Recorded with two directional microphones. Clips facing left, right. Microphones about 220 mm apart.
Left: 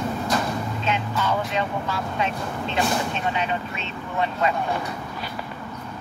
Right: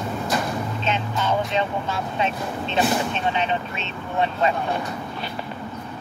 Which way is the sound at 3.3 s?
25° right (ahead or behind).